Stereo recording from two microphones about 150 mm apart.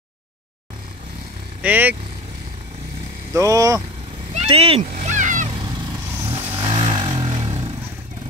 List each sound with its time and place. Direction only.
1.6 s speech: 10° right (ahead or behind)
3.3 s speech: 20° right (ahead or behind)
4.3 s speech: 45° right (ahead or behind)
4.9 s vehicle: 55° right (ahead or behind)
6.3 s vehicle: 30° right (ahead or behind)